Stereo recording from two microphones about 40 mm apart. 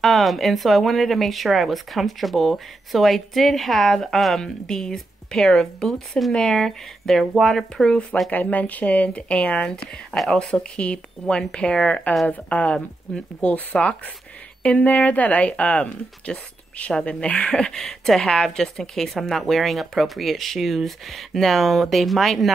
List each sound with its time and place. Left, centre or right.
0.0 s a woman's voice: centre
6.3 s a woman's voice: centre
8.3 s speech: left
10.1 s a woman's voice: centre
10.5 s speech: left
12.3 s speech: left
17.6 s a woman's voice: centre
17.8 s speech: centre
18.2 s speech: centre